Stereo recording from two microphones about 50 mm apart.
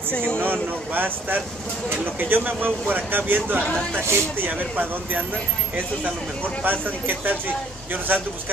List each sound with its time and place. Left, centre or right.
0.4 s speech: right
4.0 s speech: right
4.4 s speech: right
6.6 s speech: right